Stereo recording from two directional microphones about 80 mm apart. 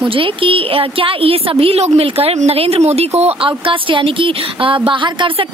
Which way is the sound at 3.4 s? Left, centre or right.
Right.